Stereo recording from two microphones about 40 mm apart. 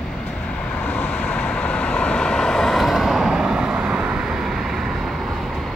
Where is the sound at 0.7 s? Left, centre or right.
Left; by 2.7 s centre.